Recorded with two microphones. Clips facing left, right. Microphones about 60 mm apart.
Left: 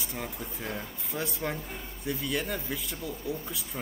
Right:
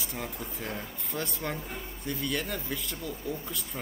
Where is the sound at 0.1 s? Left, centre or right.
Centre.